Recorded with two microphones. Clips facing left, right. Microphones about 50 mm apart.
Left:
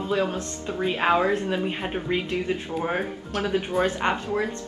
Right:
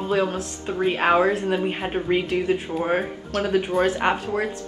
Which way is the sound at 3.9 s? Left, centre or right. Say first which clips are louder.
Right 2 dB; centre.